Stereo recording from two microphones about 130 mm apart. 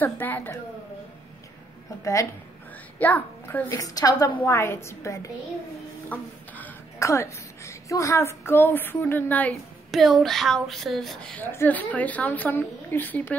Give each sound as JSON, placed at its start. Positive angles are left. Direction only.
{"t": 0.0, "sound": "speech", "side_deg": 15}
{"t": 3.0, "sound": "a child's voice", "side_deg": 15}
{"t": 6.0, "sound": "speech", "side_deg": 10}
{"t": 9.8, "sound": "speech", "side_deg": 0}